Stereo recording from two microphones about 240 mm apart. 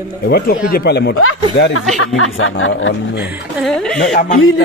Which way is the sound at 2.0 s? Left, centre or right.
Left.